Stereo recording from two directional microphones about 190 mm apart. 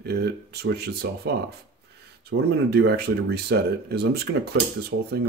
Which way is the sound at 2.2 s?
60° right (ahead or behind).